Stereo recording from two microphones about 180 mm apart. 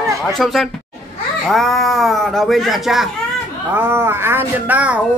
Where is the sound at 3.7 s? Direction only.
10° right (ahead or behind).